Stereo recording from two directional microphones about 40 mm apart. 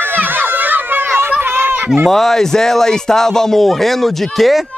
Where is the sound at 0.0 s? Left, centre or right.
Right.